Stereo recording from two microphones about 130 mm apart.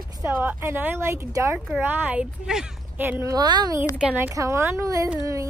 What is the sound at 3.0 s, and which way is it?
Speech, 15° right (ahead or behind).